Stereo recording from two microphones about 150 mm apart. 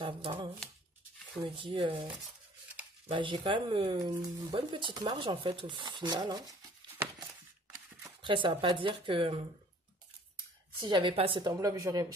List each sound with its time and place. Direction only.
0.0 s shuffling cards: 35° right (ahead or behind)
1.4 s speech: 35° right (ahead or behind)
8.2 s speech: 35° right (ahead or behind)
10.8 s speech: 30° right (ahead or behind)
11.6 s speech: 20° right (ahead or behind)